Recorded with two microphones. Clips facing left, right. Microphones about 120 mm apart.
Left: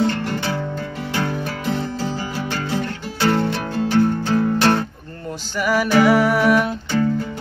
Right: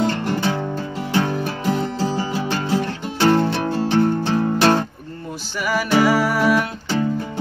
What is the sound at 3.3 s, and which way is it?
Music, 25° right (ahead or behind).